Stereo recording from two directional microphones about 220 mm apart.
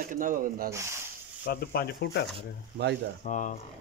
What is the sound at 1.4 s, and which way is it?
Speech, 45° left (ahead or behind).